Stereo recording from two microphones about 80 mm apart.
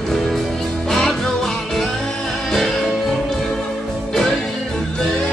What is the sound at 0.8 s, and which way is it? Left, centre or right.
Music, centre.